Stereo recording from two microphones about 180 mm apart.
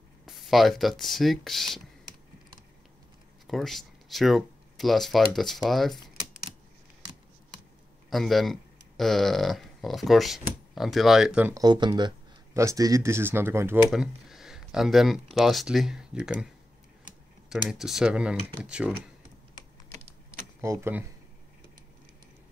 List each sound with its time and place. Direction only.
0.2 s speech: centre (ahead or behind)
3.4 s speech: centre (ahead or behind)
8.1 s speech: centre (ahead or behind)
11.5 s speech: 25° right (ahead or behind)
13.8 s speech: centre (ahead or behind)
17.5 s speech: 5° right (ahead or behind)
20.6 s speech: 15° right (ahead or behind)